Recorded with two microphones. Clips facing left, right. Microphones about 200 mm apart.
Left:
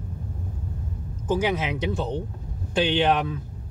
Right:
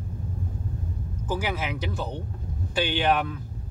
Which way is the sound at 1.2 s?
20° left (ahead or behind).